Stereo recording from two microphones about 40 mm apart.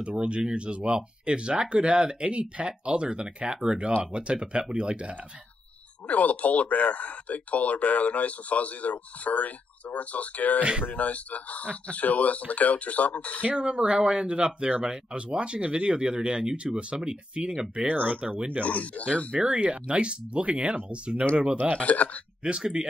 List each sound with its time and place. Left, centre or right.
0.0 s speech: right
6.0 s speech: left
10.6 s speech: right
10.9 s speech: left
13.6 s speech: right
17.8 s speech: right
18.2 s speech: right
18.7 s speech: left
19.4 s speech: right
21.7 s speech: left
22.4 s speech: right